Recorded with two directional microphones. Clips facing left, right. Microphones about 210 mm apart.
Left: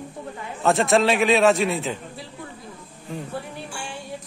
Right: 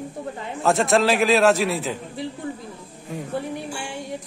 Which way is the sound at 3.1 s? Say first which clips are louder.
Right 4 dB; 20° right (ahead or behind).